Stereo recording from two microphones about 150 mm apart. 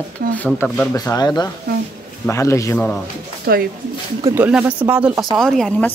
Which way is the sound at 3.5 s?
90° right.